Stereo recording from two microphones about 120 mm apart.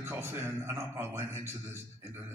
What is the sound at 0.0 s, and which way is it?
A man's voice, 20° right (ahead or behind).